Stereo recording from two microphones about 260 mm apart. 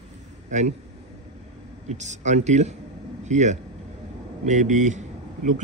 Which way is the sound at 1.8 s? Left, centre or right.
Right.